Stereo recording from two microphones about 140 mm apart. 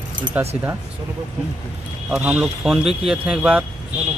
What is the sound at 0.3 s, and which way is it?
Speech, 10° right (ahead or behind).